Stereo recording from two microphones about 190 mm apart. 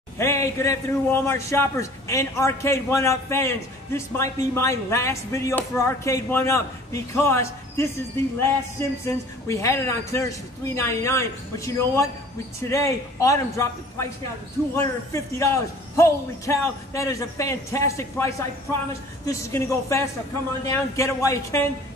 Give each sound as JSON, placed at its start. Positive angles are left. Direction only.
{"t": 0.2, "sound": "a man's voice", "side_deg": 15}